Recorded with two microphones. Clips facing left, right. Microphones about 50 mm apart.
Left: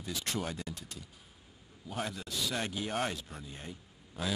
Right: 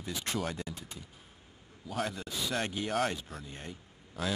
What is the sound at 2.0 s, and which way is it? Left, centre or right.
Speech, centre.